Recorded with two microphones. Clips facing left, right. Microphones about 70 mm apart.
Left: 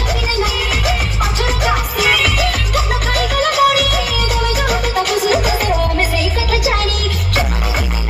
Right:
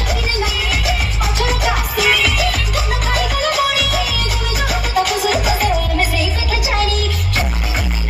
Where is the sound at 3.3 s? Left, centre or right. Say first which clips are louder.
Left 7 dB; left.